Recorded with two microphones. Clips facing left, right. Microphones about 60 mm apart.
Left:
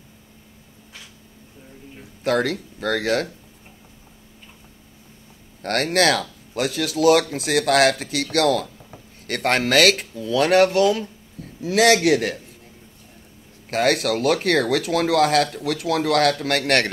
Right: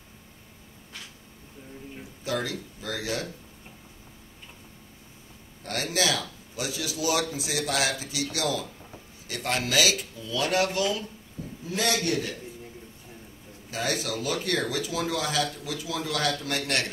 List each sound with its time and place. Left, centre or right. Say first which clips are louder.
2.2 s speech: left 9 dB; left
5.6 s speech: left 9 dB; left
11.6 s a man's voice: left 11 dB; left
13.7 s speech: left 10 dB; left